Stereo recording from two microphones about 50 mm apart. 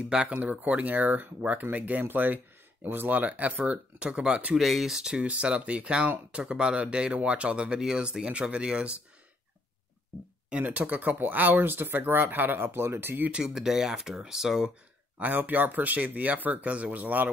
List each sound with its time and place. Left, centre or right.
0.0 s speech: centre
0.4 s speech: right
4.6 s speech: centre; by 9.0 s right
10.6 s speech: right
13.4 s speech: centre
15.1 s speech: right